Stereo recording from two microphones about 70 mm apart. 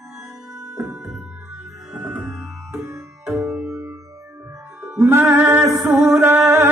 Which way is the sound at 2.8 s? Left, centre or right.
Right.